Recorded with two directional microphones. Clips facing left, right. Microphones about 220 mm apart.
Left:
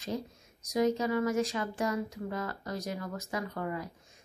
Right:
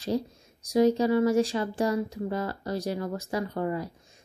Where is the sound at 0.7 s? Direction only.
30° right (ahead or behind).